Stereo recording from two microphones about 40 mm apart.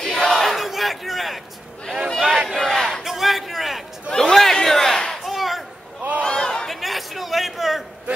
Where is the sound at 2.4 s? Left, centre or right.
Centre.